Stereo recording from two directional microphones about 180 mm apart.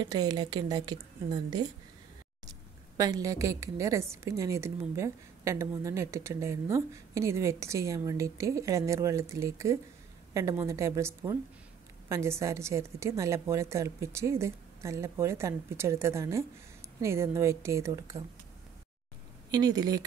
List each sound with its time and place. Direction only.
0.0 s a woman's voice: 20° right (ahead or behind)
3.0 s a woman's voice: 20° right (ahead or behind)
19.5 s a woman's voice: 20° right (ahead or behind)